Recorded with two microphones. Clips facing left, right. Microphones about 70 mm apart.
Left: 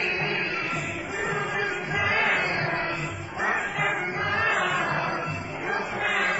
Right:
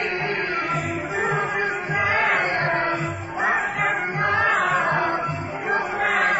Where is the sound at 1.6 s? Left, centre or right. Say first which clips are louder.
Right 4 dB; right.